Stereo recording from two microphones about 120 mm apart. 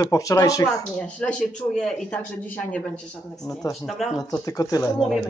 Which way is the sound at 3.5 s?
25° left (ahead or behind).